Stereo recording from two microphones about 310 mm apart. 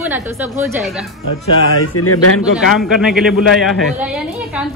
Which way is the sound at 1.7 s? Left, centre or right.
Left.